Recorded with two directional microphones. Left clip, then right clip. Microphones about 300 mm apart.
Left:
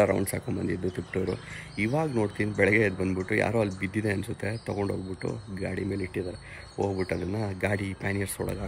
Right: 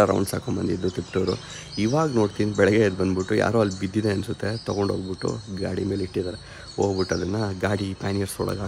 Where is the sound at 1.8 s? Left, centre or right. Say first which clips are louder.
Right 5 dB; centre.